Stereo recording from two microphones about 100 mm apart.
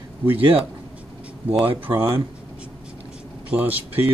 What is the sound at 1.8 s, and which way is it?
Speech, 25° right (ahead or behind).